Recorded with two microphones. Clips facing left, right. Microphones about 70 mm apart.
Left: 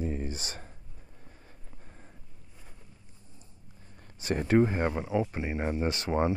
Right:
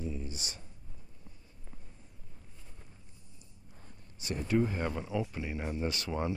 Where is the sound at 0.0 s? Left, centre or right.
Left.